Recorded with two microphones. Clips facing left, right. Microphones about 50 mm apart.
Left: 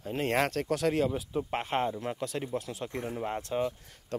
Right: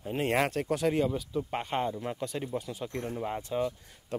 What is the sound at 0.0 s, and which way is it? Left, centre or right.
Speech, centre.